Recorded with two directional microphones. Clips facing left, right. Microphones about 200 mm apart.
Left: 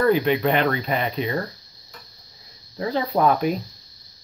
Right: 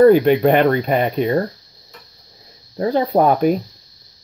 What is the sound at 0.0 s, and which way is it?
Speech, 45° right (ahead or behind).